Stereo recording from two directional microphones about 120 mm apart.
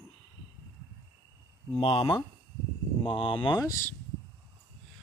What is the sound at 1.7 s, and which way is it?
Speech, 55° left (ahead or behind).